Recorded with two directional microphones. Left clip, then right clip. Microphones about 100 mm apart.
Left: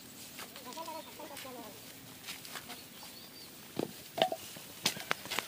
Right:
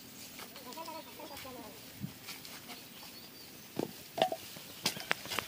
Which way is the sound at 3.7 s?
10° right (ahead or behind).